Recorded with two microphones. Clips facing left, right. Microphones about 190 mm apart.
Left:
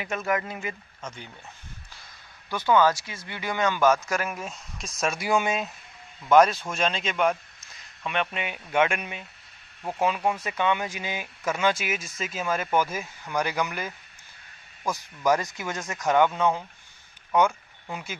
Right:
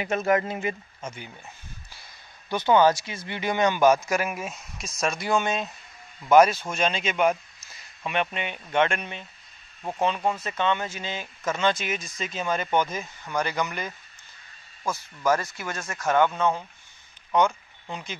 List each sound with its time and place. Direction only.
0.0 s speech: 25° right (ahead or behind)
1.0 s speech: 10° right (ahead or behind)
2.5 s speech: 20° right (ahead or behind); by 5.7 s 5° left (ahead or behind)
6.2 s a man's voice: 5° right (ahead or behind); by 16.6 s 15° left (ahead or behind)
17.3 s a sound: 5° left (ahead or behind)